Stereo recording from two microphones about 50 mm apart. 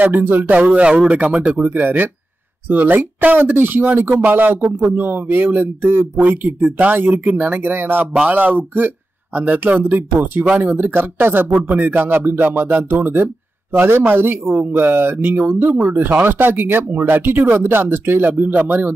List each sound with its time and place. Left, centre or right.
0.2 s speech: right
0.5 s speech: right
1.4 s speech: right
11.4 s speech: right
11.8 s speech: right